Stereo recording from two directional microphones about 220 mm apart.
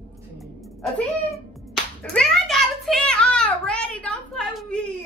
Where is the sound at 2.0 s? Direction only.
5° left (ahead or behind).